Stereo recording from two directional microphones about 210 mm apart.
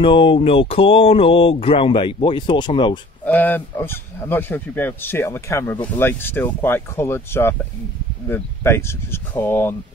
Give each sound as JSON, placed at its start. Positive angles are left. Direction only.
{"t": 0.0, "sound": "speech", "side_deg": 25}
{"t": 3.3, "sound": "speech", "side_deg": 10}